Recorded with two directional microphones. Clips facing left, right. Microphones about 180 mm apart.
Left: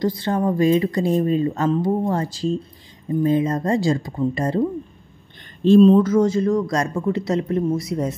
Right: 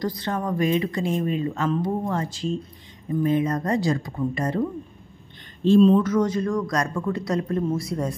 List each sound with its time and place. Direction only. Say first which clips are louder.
0.0 s a man's voice: left 6 dB; 25° left (ahead or behind)
5.8 s a man's voice: left 4 dB; 35° left (ahead or behind); by 8.2 s 20° left (ahead or behind)